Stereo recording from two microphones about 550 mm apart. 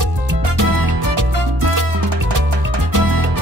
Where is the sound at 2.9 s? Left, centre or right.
Right.